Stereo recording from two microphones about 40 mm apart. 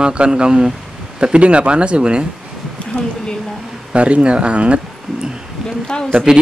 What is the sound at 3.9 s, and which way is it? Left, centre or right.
Speech, right.